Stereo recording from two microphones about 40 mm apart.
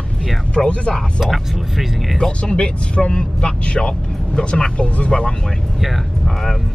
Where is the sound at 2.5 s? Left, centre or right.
Left.